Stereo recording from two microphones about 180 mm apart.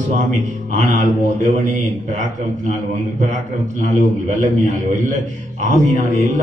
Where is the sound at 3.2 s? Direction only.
40° right (ahead or behind).